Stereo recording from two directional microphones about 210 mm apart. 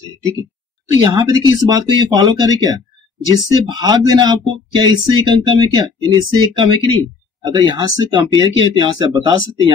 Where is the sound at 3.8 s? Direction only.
20° right (ahead or behind).